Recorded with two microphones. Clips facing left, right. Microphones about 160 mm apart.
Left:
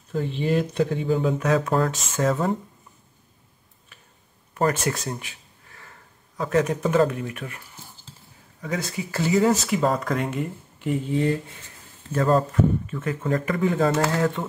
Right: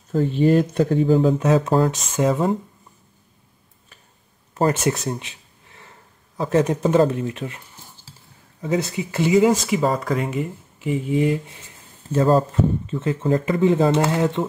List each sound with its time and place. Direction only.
0.1 s speech: 45° right (ahead or behind); by 2.5 s 20° right (ahead or behind)
4.6 s speech: 25° right (ahead or behind)
9.7 s speech: centre (ahead or behind)
12.1 s speech: 25° right (ahead or behind)